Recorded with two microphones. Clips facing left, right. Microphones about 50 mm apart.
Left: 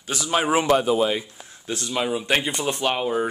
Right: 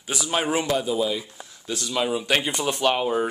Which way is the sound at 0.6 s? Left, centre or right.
Left.